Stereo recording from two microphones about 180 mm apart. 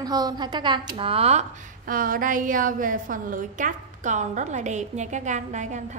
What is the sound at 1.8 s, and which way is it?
A woman's voice, 50° right (ahead or behind).